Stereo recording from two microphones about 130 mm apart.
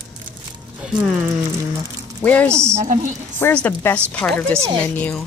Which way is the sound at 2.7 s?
70° right (ahead or behind).